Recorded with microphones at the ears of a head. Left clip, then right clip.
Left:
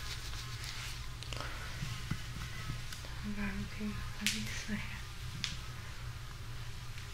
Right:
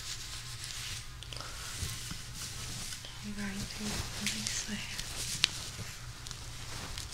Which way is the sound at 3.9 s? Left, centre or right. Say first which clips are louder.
Left 1 dB; right.